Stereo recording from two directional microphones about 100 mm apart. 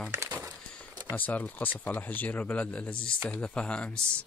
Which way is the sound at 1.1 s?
15° left (ahead or behind).